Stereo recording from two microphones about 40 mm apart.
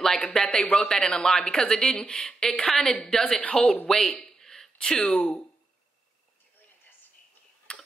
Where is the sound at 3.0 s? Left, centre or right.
Centre.